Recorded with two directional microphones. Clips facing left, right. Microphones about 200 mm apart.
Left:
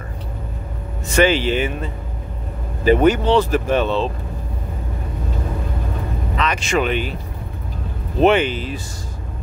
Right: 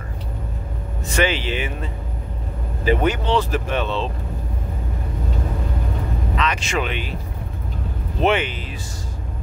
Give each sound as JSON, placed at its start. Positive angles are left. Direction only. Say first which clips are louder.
{"t": 1.1, "sound": "speech", "louder": "left 6 dB", "side_deg": 45}
{"t": 2.8, "sound": "speech", "louder": "left 6 dB", "side_deg": 45}
{"t": 6.4, "sound": "speech", "louder": "left 5 dB", "side_deg": 45}
{"t": 8.2, "sound": "speech", "louder": "left 5 dB", "side_deg": 35}